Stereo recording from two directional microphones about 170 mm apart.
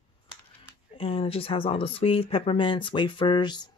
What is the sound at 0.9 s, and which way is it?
Speech, 35° left (ahead or behind).